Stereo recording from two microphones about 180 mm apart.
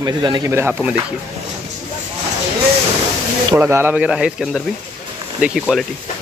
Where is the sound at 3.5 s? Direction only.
15° right (ahead or behind).